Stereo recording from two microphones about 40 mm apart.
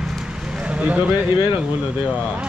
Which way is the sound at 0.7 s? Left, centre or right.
Right.